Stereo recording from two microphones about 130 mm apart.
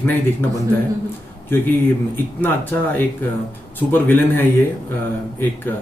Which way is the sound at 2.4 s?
15° left (ahead or behind).